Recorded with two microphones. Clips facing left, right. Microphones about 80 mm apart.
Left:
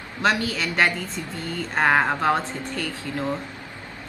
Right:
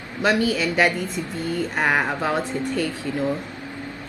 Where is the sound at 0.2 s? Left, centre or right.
Centre.